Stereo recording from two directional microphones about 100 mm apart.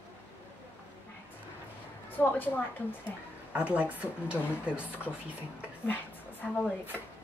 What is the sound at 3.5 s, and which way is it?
Speech, 15° right (ahead or behind).